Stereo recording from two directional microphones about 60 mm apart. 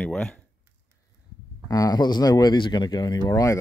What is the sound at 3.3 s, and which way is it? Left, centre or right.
Speech, left.